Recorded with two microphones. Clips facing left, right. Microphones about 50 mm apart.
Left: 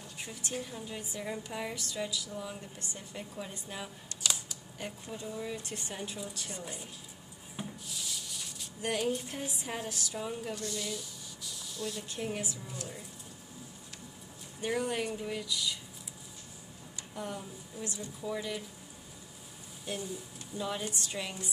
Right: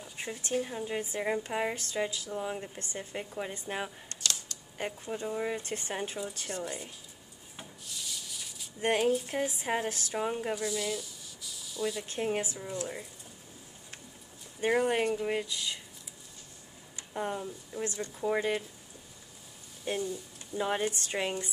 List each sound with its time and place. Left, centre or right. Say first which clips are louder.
0.2 s a woman's voice: right 7 dB; right
4.2 s camera: even; centre
4.7 s a woman's voice: right 6 dB; right
7.5 s rub: left 3 dB; centre
8.8 s a woman's voice: right 5 dB; right
10.5 s speech: right 5 dB; centre
12.0 s a woman's voice: right 5 dB; right
14.6 s a woman's voice: right 6 dB; right
16.9 s a sound: right 5 dB; right
17.7 s a woman's voice: right 5 dB; right
19.9 s a woman's voice: right 5 dB; right